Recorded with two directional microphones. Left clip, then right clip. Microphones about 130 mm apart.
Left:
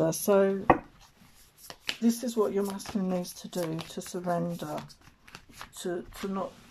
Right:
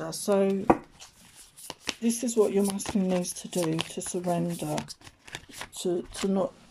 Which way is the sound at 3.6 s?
90° right.